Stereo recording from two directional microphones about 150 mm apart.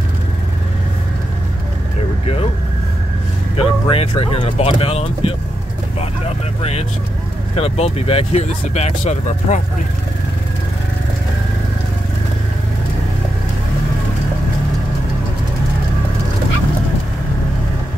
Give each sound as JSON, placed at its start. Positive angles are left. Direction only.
{"t": 2.2, "sound": "vehicle", "side_deg": 40}
{"t": 3.5, "sound": "speech", "side_deg": 40}